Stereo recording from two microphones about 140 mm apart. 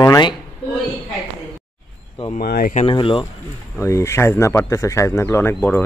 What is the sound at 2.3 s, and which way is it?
Speech, 90° left.